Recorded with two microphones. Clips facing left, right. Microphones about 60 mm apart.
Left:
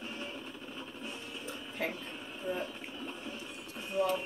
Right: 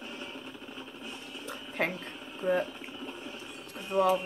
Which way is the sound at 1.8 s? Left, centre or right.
Right.